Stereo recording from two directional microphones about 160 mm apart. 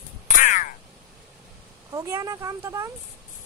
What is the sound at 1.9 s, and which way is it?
Speech, 20° right (ahead or behind).